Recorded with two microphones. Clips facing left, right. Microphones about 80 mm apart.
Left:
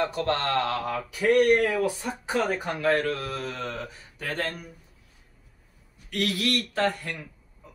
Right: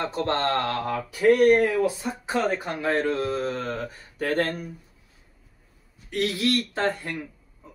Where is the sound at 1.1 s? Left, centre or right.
Right.